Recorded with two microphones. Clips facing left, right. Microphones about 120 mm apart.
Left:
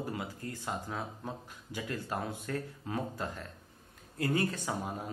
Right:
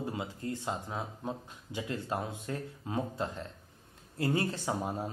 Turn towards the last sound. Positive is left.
turn(degrees=-30)  # may be behind; listen again after turning